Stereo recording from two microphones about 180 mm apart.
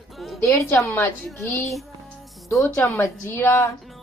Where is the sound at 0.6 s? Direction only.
15° left (ahead or behind).